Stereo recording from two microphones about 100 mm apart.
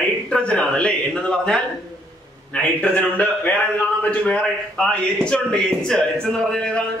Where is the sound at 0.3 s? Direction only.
10° left (ahead or behind).